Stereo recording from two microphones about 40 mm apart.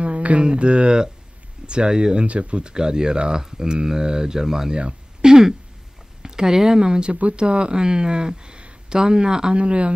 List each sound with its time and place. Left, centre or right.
0.0 s speech: right
2.1 s speech: right; by 4.7 s centre
4.7 s a sound: right
6.2 s speech: centre